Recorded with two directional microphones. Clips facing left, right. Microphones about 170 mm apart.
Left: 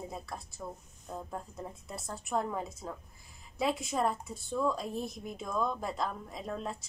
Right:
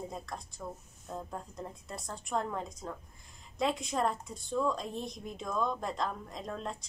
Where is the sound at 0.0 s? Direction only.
5° left (ahead or behind).